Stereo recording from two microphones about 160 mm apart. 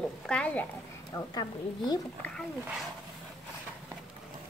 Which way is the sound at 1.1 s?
25° left (ahead or behind).